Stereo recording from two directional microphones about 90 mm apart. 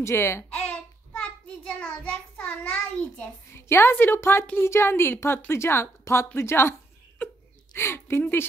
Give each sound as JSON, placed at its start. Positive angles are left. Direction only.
{"t": 0.0, "sound": "speech", "side_deg": 30}
{"t": 2.3, "sound": "a child's voice", "side_deg": 25}
{"t": 7.7, "sound": "a woman's voice", "side_deg": 30}